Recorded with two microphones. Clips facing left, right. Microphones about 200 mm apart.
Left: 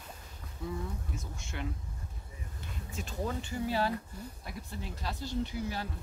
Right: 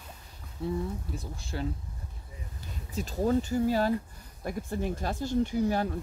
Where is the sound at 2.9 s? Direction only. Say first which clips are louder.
Right 10 dB; 40° right (ahead or behind).